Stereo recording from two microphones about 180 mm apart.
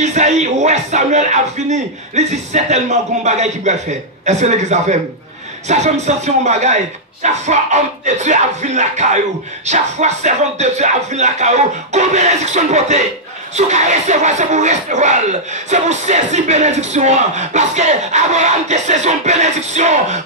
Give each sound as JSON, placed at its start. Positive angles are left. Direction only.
{"t": 0.0, "sound": "speech", "side_deg": -40}